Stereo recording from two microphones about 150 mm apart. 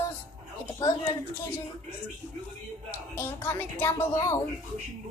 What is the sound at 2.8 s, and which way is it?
Speech, 15° left (ahead or behind).